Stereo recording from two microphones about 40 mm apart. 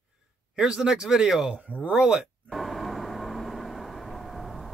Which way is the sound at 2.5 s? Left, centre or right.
Centre.